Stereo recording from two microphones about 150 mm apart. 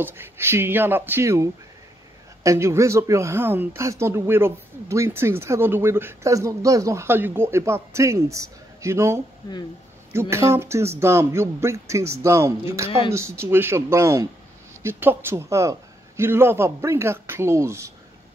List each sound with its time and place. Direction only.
0.0 s a man's voice: 15° right (ahead or behind)
10.3 s a man's voice: 20° right (ahead or behind)